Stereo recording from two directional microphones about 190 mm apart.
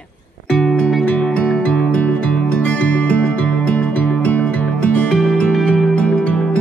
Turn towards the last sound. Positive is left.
turn(degrees=5)  # may be behind; listen again after turning